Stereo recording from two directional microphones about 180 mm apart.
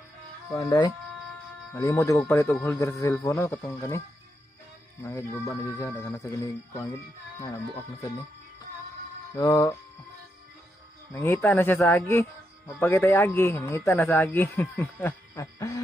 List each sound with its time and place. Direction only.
0.5 s speech: 20° left (ahead or behind)
5.0 s speech: 15° left (ahead or behind)
9.4 s speech: 20° left (ahead or behind)
11.1 s speech: 15° left (ahead or behind)